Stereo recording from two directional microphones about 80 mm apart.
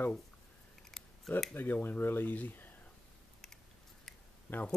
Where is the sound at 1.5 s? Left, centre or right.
Left.